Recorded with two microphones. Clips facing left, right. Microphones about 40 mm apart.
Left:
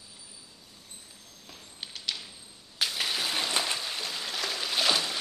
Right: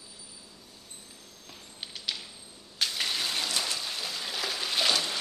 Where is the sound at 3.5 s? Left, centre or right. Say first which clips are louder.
Left 2 dB; left.